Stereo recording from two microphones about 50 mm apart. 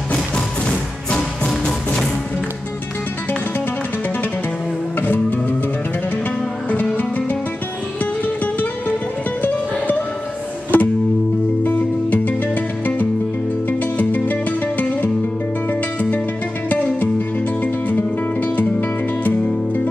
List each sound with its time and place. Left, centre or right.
0.7 s music: centre
5.0 s music: left
7.0 s music: left
9.4 s music: left
16.6 s music: left